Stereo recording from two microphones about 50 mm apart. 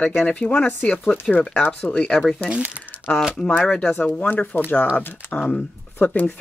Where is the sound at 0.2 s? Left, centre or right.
Left.